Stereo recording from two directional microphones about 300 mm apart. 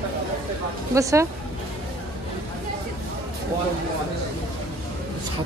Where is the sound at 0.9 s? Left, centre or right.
Centre.